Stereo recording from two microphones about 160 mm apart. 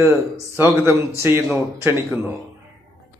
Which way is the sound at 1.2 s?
15° right (ahead or behind).